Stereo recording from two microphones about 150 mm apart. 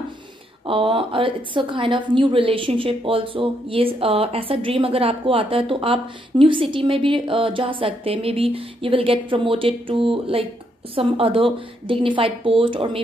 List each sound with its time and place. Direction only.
0.7 s a woman's voice: 35° right (ahead or behind)